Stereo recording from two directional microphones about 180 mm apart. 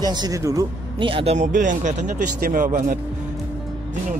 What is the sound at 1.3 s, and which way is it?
Speech, 45° right (ahead or behind).